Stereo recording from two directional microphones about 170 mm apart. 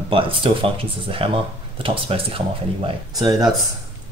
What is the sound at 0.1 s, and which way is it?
Speech, 30° right (ahead or behind).